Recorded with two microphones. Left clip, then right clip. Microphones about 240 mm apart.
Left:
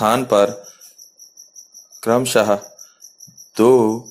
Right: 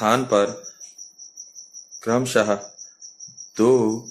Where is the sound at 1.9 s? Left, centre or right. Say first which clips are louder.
Left 4 dB; centre.